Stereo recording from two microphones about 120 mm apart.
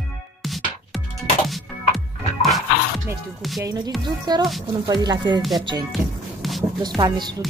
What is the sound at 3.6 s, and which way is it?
Speech, 30° right (ahead or behind).